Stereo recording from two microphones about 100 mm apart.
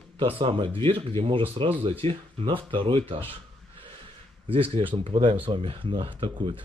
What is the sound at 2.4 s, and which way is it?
Speech, 60° right (ahead or behind).